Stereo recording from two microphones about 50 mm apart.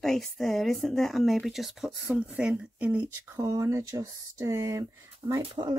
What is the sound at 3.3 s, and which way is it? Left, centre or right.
Speech, right.